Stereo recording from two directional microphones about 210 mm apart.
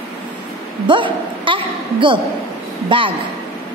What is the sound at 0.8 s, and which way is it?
A woman's voice, 25° right (ahead or behind).